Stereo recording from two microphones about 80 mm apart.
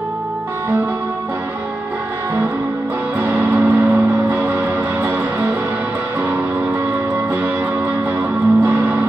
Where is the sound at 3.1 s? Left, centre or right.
Centre.